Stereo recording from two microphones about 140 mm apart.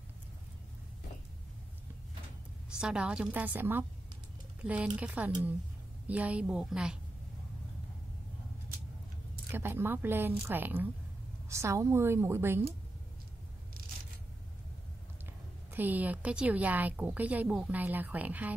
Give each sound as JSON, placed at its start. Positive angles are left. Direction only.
{"t": 2.8, "sound": "a woman's voice", "side_deg": -5}
{"t": 9.5, "sound": "a woman's voice", "side_deg": -15}
{"t": 15.7, "sound": "a woman's voice", "side_deg": -10}